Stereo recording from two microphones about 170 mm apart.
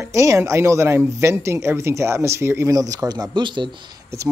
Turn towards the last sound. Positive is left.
turn(degrees=-20)  # may be behind; listen again after turning